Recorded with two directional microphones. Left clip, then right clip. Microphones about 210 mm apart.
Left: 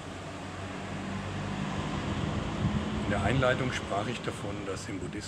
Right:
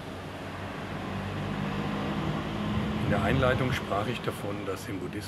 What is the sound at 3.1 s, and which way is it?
Speech, 5° right (ahead or behind).